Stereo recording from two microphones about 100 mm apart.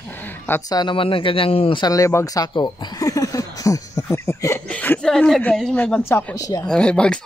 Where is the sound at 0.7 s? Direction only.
40° left (ahead or behind).